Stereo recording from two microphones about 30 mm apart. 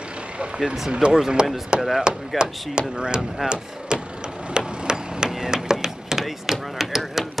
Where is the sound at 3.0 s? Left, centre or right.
Right.